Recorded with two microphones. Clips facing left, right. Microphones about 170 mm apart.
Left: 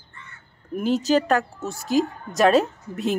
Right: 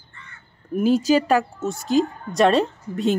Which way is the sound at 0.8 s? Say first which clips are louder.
Right 3 dB; 10° right (ahead or behind).